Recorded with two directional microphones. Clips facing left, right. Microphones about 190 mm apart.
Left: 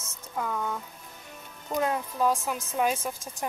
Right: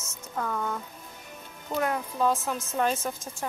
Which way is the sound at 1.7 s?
20° left (ahead or behind).